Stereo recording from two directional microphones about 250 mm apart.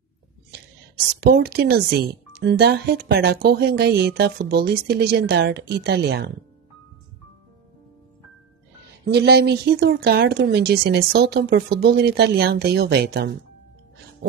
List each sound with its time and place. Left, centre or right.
1.2 s speech: right
9.1 s speech: right